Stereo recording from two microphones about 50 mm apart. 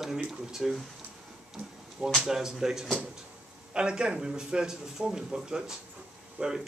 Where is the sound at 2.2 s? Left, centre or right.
Centre.